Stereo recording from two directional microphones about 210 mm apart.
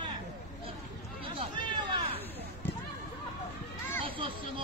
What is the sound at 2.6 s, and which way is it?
Basketball bounce, 10° left (ahead or behind).